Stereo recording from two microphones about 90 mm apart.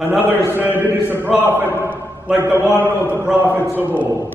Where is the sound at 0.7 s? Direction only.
25° left (ahead or behind).